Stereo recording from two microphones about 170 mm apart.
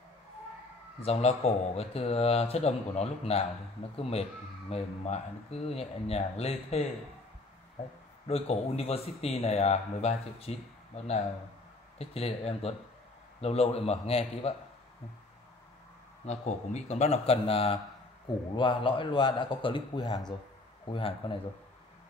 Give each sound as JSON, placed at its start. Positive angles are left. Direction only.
{"t": 1.0, "sound": "speech", "side_deg": 40}
{"t": 8.3, "sound": "speech", "side_deg": 35}
{"t": 16.3, "sound": "a man's voice", "side_deg": 40}